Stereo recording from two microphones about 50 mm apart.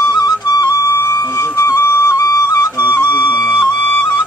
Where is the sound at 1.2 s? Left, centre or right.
Left.